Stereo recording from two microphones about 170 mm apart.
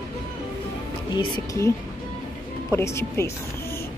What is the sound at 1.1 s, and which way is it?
Speech, 20° left (ahead or behind).